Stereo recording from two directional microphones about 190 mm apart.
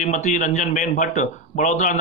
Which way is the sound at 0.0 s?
40° left (ahead or behind).